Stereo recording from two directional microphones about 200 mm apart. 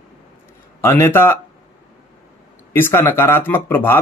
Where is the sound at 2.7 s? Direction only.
10° left (ahead or behind).